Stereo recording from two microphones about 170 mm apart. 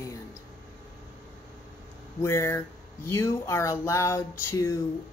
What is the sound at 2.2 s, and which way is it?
Speech, 15° left (ahead or behind).